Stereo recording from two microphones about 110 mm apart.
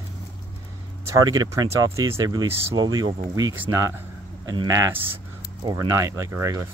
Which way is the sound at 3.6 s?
25° right (ahead or behind).